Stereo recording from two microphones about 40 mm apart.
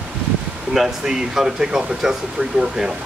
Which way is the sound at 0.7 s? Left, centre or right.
Centre.